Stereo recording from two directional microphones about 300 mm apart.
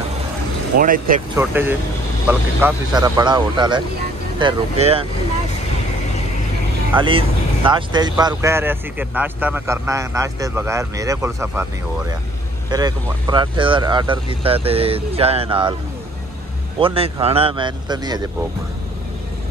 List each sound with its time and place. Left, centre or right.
0.7 s speech: right
1.3 s speech: centre
6.9 s speech: centre
12.6 s speech: centre
16.8 s speech: centre